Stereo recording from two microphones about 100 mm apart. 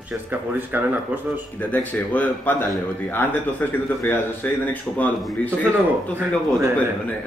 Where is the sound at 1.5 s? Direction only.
15° left (ahead or behind).